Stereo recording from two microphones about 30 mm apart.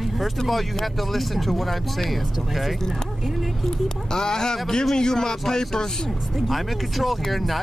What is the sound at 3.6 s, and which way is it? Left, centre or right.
Speech, centre.